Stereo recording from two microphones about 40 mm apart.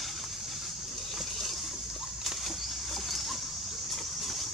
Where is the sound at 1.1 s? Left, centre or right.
Centre.